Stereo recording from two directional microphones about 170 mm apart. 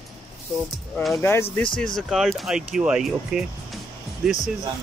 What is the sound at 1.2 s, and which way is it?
Speech, 15° left (ahead or behind).